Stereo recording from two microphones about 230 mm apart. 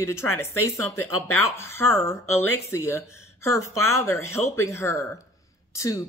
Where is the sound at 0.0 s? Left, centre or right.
Centre.